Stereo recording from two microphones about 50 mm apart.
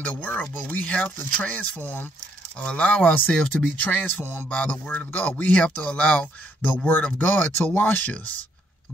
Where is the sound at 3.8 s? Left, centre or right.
Left.